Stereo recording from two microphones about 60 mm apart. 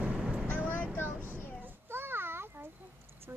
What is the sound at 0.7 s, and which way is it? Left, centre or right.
Vehicle, left.